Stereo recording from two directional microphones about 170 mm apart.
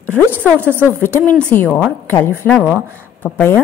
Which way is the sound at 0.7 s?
10° right (ahead or behind).